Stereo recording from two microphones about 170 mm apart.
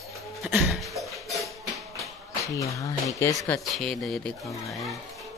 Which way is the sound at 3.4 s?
Centre (ahead or behind).